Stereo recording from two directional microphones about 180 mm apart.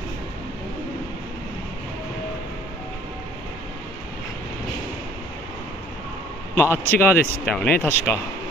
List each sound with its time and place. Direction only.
6.5 s speech: 15° left (ahead or behind)